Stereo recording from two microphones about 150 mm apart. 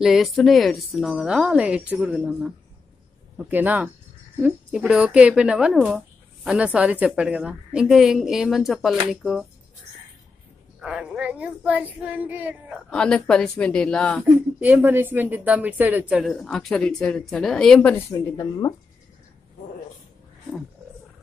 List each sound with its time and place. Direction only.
0.0 s speech: centre (ahead or behind)
10.8 s speech: 10° right (ahead or behind)
12.9 s speech: 5° left (ahead or behind)
14.6 s speech: 10° right (ahead or behind); by 18.0 s 5° left (ahead or behind)
18.3 s speech: 25° left (ahead or behind)